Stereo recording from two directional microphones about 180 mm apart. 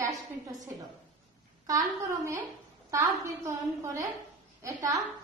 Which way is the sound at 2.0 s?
15° right (ahead or behind).